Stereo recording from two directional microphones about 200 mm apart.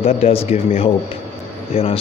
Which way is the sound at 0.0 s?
30° left (ahead or behind).